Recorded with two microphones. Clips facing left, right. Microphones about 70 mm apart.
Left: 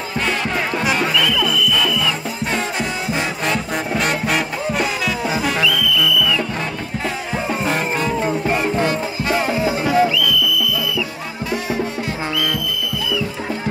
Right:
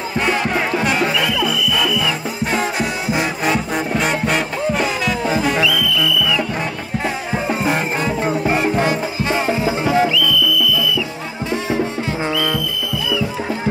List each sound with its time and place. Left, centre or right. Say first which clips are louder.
0.3 s music: right 3 dB; centre
1.1 s music: even; centre
5.7 s music: even; centre
7.3 s music: right 2 dB; centre